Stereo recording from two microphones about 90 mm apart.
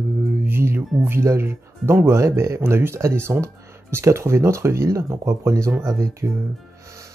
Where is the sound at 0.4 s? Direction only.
25° right (ahead or behind).